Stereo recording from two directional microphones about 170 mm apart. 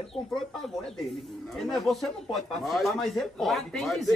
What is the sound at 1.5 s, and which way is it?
Speech, centre (ahead or behind).